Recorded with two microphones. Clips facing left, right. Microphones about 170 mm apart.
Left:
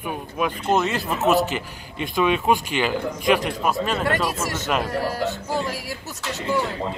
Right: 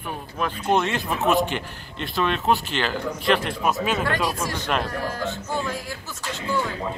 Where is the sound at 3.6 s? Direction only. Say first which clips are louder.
Even; centre (ahead or behind).